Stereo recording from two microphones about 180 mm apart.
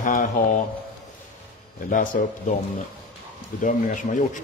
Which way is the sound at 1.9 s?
45° left (ahead or behind).